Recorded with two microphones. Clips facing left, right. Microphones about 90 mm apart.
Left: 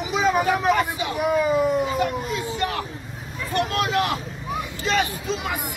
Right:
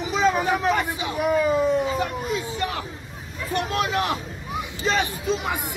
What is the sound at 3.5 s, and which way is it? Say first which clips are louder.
Speech: left 1 dB; 25° right (ahead or behind).